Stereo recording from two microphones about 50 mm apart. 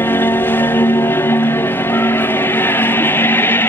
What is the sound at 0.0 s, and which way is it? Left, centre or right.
Music, left.